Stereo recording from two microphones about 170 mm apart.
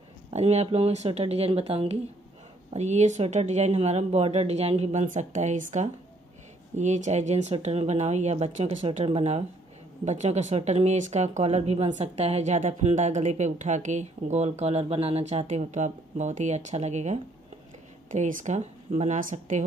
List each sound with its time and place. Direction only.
0.3 s speech: 40° right (ahead or behind)